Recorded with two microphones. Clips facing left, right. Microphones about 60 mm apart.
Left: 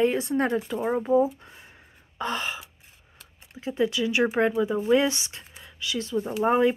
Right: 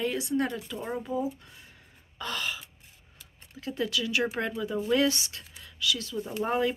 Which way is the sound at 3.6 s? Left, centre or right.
Left.